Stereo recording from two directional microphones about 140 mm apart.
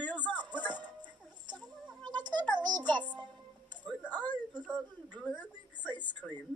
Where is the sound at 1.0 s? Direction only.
35° right (ahead or behind).